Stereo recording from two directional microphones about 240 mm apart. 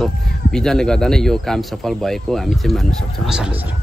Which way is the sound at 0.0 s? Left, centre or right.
Centre.